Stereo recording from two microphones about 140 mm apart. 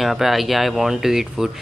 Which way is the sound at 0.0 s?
Centre (ahead or behind).